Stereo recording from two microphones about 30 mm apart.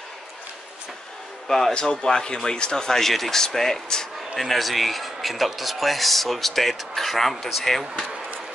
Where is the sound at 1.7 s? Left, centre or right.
Left.